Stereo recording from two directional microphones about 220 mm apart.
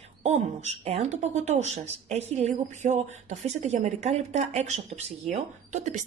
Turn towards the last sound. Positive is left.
turn(degrees=-35)  # may be behind; listen again after turning